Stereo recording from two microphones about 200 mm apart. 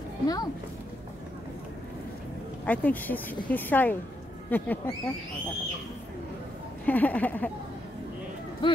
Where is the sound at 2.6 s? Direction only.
5° left (ahead or behind).